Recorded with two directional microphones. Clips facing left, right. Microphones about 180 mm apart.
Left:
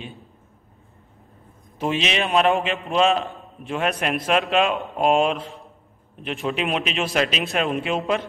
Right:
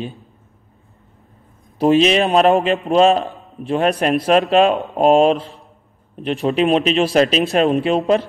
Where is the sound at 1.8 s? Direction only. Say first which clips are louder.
Right 10 dB; 40° right (ahead or behind).